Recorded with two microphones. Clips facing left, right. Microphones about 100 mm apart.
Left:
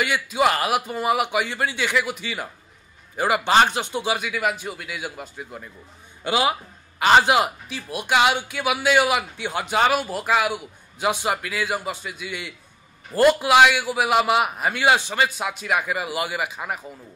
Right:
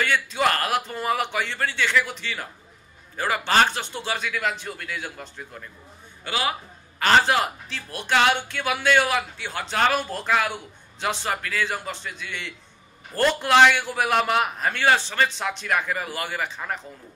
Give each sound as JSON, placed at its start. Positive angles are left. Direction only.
{"t": 0.0, "sound": "a man's voice", "side_deg": 10}